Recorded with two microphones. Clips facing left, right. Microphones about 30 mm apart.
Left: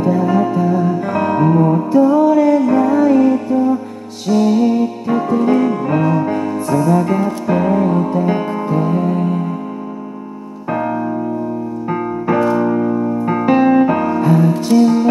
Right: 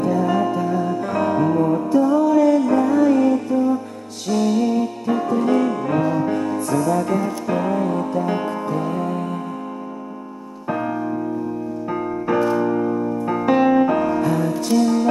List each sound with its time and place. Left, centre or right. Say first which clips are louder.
0.0 s music: left 4 dB; centre
10.7 s music: left 4 dB; centre